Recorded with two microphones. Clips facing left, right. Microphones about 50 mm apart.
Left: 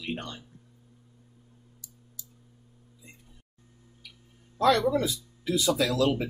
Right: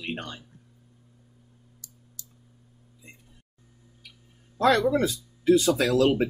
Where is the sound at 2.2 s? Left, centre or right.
Right.